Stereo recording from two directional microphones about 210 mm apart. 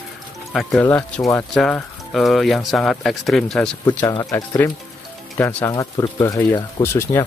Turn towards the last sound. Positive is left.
turn(degrees=10)  # may be behind; listen again after turning